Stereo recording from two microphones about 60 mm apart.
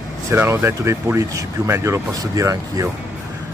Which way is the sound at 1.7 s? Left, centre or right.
Right.